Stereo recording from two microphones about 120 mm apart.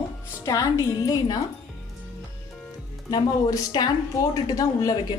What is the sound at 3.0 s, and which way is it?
A woman's voice, 35° left (ahead or behind).